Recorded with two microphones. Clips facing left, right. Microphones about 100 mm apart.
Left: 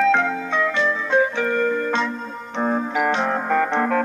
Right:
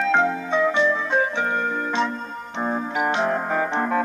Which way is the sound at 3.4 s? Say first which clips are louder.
Left 3 dB; 70° left (ahead or behind).